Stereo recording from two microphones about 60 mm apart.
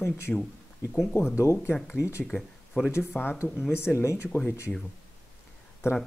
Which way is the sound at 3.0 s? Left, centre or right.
Left.